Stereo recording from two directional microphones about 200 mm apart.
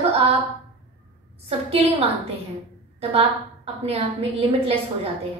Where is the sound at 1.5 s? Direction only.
30° right (ahead or behind).